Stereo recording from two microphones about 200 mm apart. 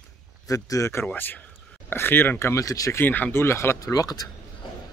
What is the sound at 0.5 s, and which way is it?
Speech, 15° left (ahead or behind).